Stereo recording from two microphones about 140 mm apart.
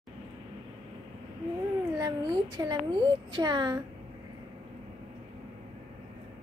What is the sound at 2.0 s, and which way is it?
A woman's voice, 25° right (ahead or behind).